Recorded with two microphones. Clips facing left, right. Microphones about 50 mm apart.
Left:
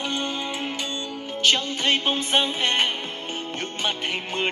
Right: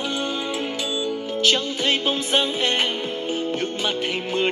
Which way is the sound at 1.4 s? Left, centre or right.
Centre.